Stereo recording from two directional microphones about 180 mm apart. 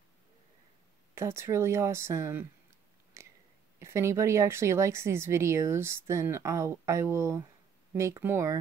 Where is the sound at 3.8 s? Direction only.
15° right (ahead or behind).